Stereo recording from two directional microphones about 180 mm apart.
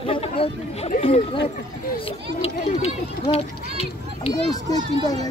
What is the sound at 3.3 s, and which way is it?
A child's voice, 35° left (ahead or behind).